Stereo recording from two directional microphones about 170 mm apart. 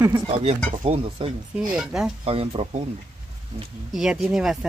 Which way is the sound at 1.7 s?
5° right (ahead or behind).